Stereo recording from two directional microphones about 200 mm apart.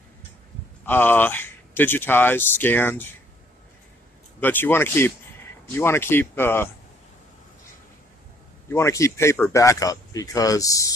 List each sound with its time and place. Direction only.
0.8 s speech: 10° left (ahead or behind)
4.4 s speech: 10° left (ahead or behind)
8.7 s speech: 15° left (ahead or behind)